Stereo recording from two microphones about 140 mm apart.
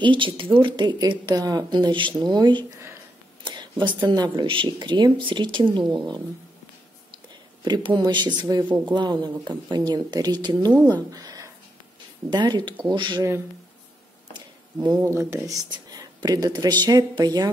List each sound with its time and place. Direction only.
0.0 s speech: 35° right (ahead or behind)
7.6 s speech: 30° right (ahead or behind)
14.3 s a sound: 30° right (ahead or behind)
15.0 s speech: 20° right (ahead or behind)